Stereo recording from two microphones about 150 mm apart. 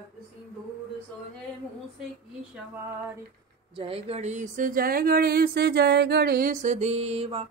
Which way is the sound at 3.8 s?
40° right (ahead or behind).